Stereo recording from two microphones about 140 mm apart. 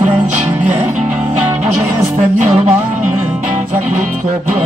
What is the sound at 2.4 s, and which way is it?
Music, 50° right (ahead or behind).